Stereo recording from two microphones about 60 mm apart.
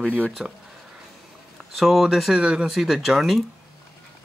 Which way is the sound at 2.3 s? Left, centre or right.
Centre.